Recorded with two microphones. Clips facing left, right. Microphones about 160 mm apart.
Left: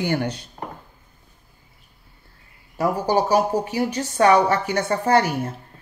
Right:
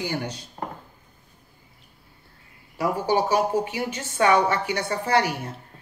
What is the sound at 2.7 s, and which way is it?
A woman's voice, 40° left (ahead or behind).